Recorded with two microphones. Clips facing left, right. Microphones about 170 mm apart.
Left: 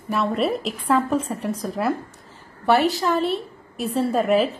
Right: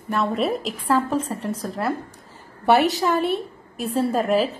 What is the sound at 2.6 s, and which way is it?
Speech, 20° right (ahead or behind).